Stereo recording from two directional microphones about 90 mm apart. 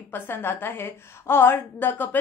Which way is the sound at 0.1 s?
25° left (ahead or behind).